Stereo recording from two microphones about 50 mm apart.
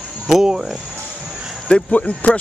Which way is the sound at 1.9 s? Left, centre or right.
Left.